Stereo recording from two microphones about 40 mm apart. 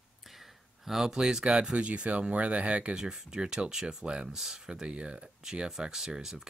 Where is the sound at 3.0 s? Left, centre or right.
Centre.